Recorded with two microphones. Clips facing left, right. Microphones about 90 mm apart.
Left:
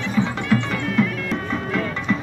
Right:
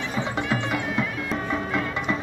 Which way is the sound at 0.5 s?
15° right (ahead or behind).